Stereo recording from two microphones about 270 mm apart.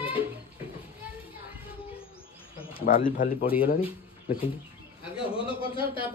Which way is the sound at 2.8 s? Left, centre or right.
Left.